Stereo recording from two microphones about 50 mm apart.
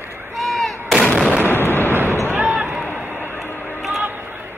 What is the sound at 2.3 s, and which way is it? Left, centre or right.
Basketball bounce, right.